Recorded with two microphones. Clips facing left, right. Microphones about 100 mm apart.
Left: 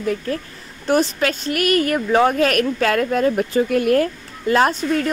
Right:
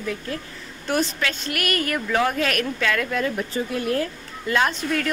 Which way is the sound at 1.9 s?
35° left (ahead or behind).